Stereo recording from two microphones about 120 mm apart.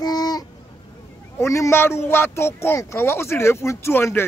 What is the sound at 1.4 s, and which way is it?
Speech, 25° left (ahead or behind).